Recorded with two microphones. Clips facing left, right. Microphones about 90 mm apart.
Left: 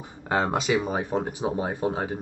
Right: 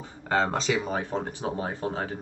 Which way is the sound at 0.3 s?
15° left (ahead or behind).